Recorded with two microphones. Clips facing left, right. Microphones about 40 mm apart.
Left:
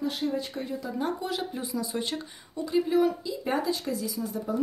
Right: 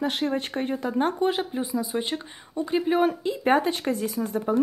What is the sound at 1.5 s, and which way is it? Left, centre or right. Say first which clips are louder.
Speech: right 5 dB; right.